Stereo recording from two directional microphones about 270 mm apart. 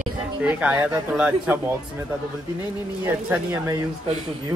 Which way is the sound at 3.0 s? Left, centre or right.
Centre.